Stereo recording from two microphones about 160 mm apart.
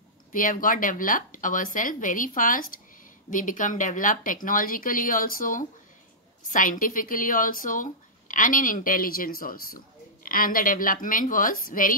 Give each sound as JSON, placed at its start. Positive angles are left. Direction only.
{"t": 0.3, "sound": "speech", "side_deg": 60}